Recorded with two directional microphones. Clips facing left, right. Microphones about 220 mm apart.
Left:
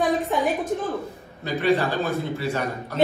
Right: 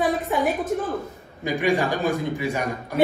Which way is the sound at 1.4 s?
15° right (ahead or behind).